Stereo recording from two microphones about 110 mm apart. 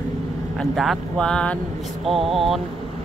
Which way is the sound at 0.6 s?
Centre (ahead or behind).